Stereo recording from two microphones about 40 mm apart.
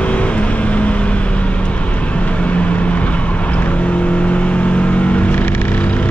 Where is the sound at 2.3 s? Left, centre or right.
Left.